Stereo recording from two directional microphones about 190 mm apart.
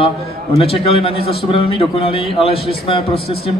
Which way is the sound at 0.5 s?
30° left (ahead or behind).